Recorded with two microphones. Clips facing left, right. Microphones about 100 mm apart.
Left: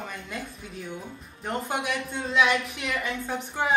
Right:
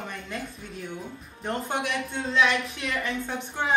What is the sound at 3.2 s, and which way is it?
Speech, 10° left (ahead or behind).